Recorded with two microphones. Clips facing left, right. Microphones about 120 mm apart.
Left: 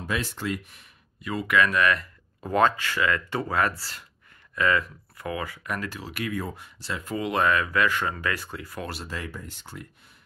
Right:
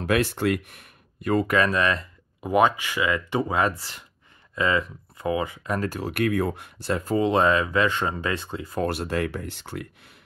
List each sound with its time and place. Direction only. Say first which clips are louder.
0.0 s speech: right 8 dB; 65° right (ahead or behind); by 2.0 s 30° right (ahead or behind)
2.4 s speech: right 2 dB; 15° right (ahead or behind)
5.9 s speech: right 8 dB; 50° right (ahead or behind); by 8.8 s 25° right (ahead or behind)
8.8 s speech: right 13 dB; 60° right (ahead or behind)